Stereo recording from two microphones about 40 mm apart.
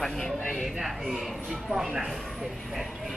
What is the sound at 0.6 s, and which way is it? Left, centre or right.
Speech, centre.